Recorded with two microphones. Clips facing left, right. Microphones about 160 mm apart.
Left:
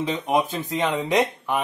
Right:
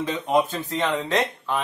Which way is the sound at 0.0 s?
15° left (ahead or behind).